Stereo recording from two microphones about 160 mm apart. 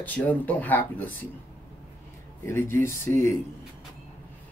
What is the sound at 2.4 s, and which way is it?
Speech, 15° left (ahead or behind).